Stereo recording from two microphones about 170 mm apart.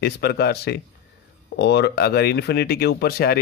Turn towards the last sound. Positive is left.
turn(degrees=65)  # may be behind; listen again after turning